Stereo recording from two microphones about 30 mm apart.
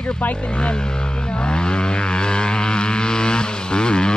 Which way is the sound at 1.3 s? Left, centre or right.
Left.